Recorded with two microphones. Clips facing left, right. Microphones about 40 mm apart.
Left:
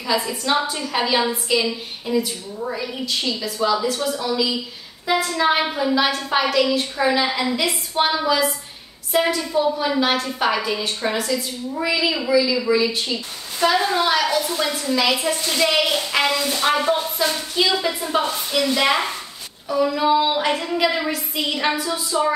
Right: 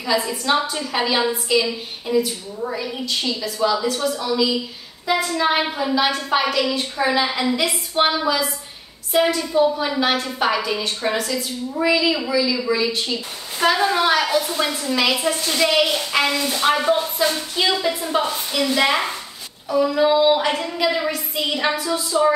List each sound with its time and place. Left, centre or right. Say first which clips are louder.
0.0 s a woman's voice: right 1 dB; centre
13.6 s a woman's voice: right 1 dB; right; by 22.3 s centre